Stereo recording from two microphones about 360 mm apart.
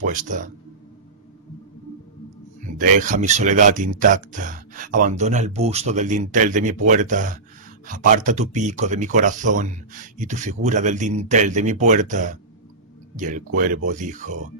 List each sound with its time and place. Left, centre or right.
0.0 s speech: right
2.8 s speech: right